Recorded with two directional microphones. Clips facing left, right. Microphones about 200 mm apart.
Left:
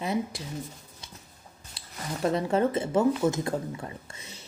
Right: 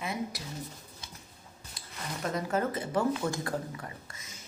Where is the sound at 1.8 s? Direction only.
30° left (ahead or behind).